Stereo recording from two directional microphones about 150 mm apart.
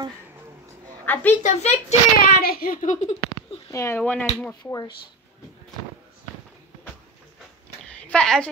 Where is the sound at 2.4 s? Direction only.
80° left.